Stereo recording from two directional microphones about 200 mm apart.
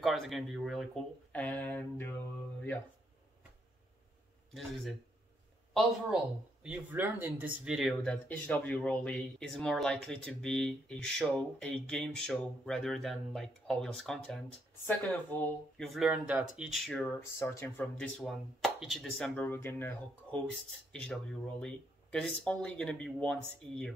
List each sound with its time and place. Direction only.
0.0 s speech: centre (ahead or behind)
4.6 s speech: centre (ahead or behind)
6.6 s speech: 5° right (ahead or behind)
17.4 s speech: 10° left (ahead or behind)